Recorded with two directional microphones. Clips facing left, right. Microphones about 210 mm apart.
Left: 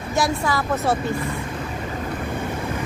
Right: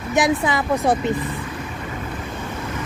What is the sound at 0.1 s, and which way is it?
A woman's voice, 20° right (ahead or behind).